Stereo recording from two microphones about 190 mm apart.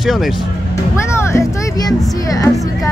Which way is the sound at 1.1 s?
15° left (ahead or behind).